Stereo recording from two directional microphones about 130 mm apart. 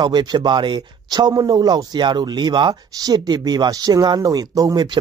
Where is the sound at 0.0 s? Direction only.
35° right (ahead or behind).